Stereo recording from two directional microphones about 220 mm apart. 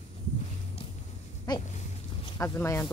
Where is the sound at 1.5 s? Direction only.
20° left (ahead or behind).